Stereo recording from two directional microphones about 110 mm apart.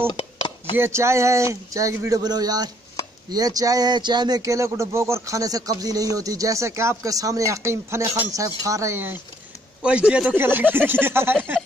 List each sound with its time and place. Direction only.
0.1 s chopping: 50° left (ahead or behind)
0.7 s a man's voice: 25° right (ahead or behind)